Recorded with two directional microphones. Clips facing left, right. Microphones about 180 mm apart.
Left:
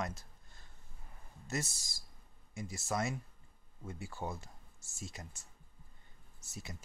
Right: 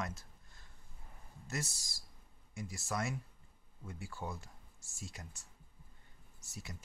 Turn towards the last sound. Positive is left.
turn(degrees=20)  # may be behind; listen again after turning